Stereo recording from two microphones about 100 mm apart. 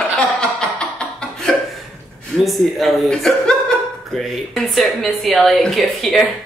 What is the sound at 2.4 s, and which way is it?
Speech, centre (ahead or behind).